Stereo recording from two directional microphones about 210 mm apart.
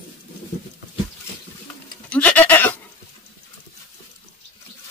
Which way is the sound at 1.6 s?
5° left (ahead or behind).